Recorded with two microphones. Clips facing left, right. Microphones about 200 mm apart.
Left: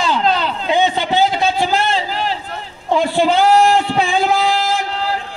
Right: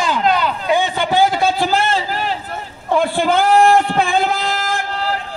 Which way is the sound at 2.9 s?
55° right (ahead or behind).